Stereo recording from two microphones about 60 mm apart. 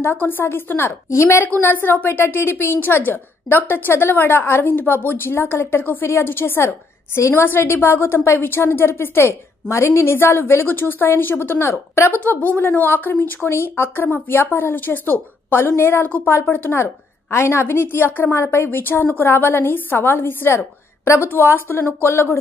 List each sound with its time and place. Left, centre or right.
0.0 s a woman's voice: left
1.1 s speech: left
1.4 s a woman's voice: left
12.3 s a woman's voice: left
16.7 s a woman's voice: left
18.3 s speech: left
18.7 s a woman's voice: left
20.5 s a woman's voice: left
21.3 s a woman's voice: left